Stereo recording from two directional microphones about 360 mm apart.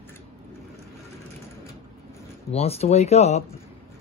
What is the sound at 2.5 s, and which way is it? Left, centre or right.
Speech, centre.